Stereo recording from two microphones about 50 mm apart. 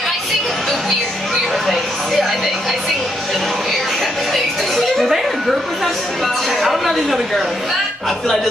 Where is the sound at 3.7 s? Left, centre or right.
Centre.